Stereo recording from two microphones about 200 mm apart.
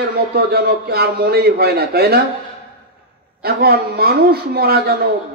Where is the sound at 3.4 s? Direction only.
50° right (ahead or behind).